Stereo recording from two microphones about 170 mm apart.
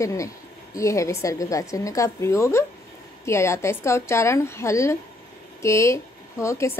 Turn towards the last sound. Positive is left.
turn(degrees=15)  # may be behind; listen again after turning